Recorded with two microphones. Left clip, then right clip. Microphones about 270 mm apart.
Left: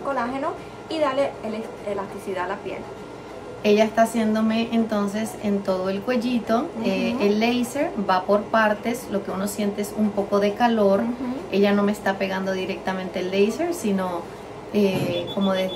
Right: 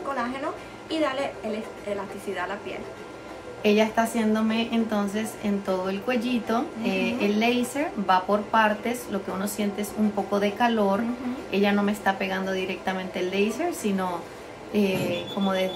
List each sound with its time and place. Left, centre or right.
0.8 s a child's voice: centre
3.6 s a woman's voice: centre